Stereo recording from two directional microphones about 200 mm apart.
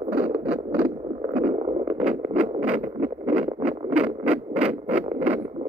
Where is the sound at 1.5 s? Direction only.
25° right (ahead or behind).